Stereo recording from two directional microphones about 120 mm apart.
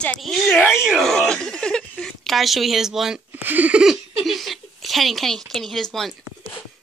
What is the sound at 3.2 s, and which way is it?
Speech, 15° right (ahead or behind).